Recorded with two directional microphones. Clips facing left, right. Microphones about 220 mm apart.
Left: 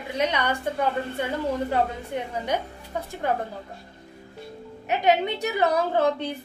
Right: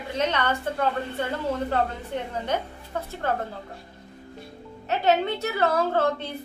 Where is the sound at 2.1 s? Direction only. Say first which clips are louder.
Even; 10° left (ahead or behind).